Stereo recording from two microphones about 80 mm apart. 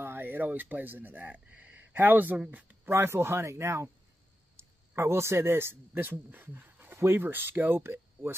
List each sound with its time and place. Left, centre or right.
0.0 s speech: right
2.9 s a man's voice: right